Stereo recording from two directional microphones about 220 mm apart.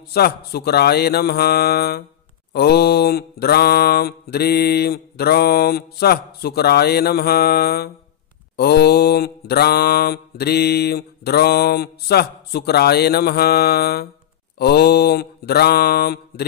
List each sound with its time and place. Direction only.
0.1 s mantra: 45° left (ahead or behind)